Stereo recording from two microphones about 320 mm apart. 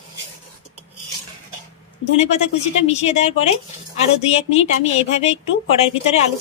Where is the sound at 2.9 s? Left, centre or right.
Left.